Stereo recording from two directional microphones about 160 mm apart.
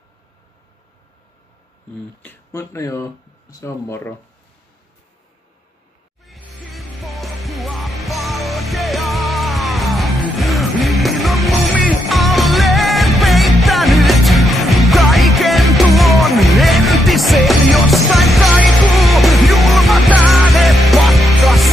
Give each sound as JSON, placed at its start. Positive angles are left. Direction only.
{"t": 2.2, "sound": "speech", "side_deg": 20}
{"t": 6.2, "sound": "music", "side_deg": 0}